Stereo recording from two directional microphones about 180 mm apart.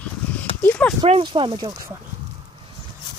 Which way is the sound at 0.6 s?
10° left (ahead or behind).